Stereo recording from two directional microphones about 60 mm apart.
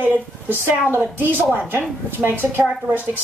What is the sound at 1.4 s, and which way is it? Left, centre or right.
A woman's voice, right.